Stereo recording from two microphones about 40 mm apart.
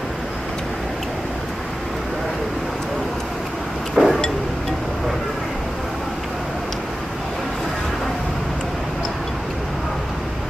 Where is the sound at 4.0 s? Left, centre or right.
Centre.